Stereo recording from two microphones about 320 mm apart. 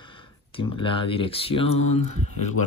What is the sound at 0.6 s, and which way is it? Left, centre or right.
Speech, centre.